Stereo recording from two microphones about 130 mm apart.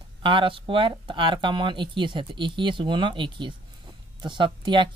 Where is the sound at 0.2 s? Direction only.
40° right (ahead or behind).